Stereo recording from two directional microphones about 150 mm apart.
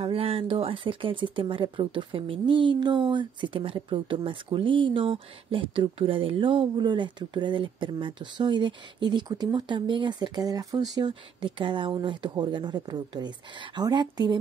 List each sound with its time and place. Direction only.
0.0 s speech: 40° right (ahead or behind)